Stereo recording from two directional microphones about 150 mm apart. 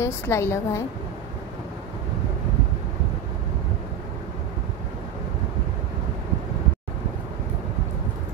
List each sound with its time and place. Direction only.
0.0 s a woman's voice: 20° left (ahead or behind)